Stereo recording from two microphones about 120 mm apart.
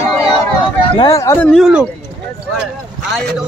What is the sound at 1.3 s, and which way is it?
Speech, 15° left (ahead or behind).